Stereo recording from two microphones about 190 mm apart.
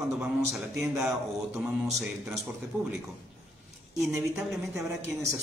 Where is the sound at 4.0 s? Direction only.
15° right (ahead or behind).